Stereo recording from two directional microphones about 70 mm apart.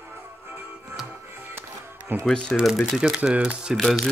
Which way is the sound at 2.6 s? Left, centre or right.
Centre.